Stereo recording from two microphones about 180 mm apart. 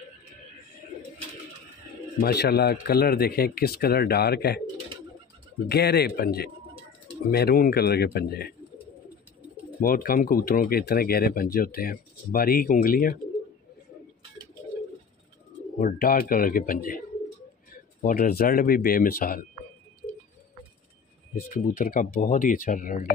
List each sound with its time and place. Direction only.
2.1 s speech: 60° left (ahead or behind)
5.7 s speech: 60° left (ahead or behind)
9.8 s speech: 55° left (ahead or behind)
15.8 s speech: 55° left (ahead or behind)
21.4 s speech: 50° left (ahead or behind)